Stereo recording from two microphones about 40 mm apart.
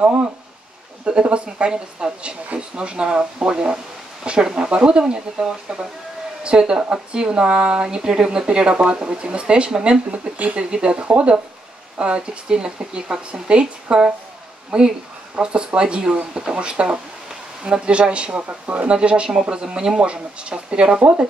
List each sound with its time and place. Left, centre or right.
1.3 s speech: right
18.5 s speech: right
18.9 s speech: right